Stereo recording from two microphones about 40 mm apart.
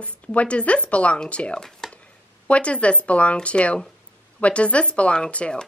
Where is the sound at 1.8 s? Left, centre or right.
Centre.